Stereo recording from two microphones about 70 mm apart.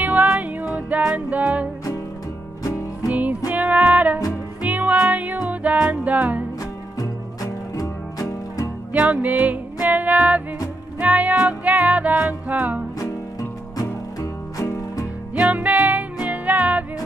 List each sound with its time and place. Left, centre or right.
0.0 s music: right
2.6 s music: left
3.1 s music: right
6.6 s music: left
8.9 s music: right
13.0 s music: left
15.3 s music: right